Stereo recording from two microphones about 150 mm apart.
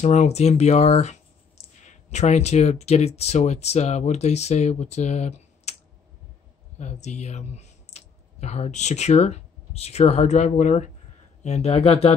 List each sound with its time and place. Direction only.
0.0 s speech: 50° left (ahead or behind)
6.8 s speech: 50° left (ahead or behind)